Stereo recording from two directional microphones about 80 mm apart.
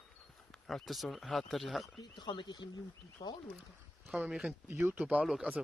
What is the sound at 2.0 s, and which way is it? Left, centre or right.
Speech, left.